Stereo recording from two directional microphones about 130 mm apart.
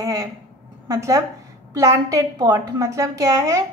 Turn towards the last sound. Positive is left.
turn(degrees=-25)  # may be behind; listen again after turning